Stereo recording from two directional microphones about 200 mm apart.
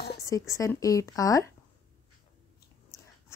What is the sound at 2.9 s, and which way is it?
Biting, 15° left (ahead or behind).